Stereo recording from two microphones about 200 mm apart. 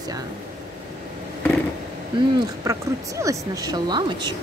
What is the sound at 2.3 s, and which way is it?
Speech, 15° right (ahead or behind).